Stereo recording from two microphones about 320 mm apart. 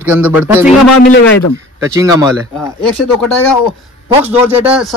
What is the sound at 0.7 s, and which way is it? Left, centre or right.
Speech, left.